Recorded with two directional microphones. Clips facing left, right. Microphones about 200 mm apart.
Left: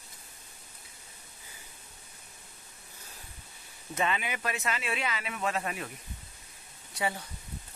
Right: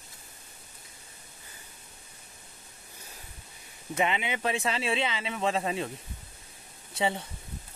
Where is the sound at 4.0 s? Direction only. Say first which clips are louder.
Right 3 dB; 20° right (ahead or behind).